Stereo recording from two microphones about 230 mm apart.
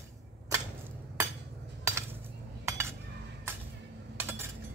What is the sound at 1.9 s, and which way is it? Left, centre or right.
Cutlery, centre.